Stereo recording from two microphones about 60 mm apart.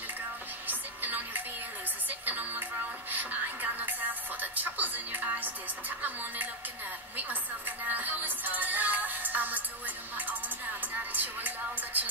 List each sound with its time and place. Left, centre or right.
0.7 s music: right